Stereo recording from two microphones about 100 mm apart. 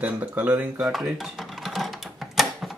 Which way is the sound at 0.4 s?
15° right (ahead or behind).